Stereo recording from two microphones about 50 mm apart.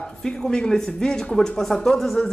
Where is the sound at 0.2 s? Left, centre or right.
Centre.